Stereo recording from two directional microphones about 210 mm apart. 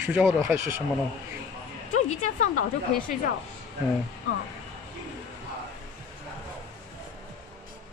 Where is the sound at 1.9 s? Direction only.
35° left (ahead or behind).